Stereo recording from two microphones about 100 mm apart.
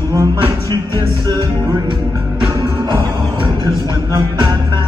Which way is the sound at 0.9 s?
50° right (ahead or behind).